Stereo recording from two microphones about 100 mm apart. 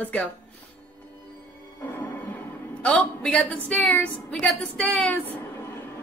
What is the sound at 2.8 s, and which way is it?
A woman's voice, 15° left (ahead or behind).